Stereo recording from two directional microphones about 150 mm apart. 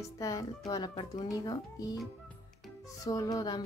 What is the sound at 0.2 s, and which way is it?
Speech, 20° left (ahead or behind).